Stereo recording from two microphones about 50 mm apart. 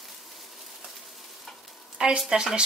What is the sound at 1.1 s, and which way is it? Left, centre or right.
Stir, centre.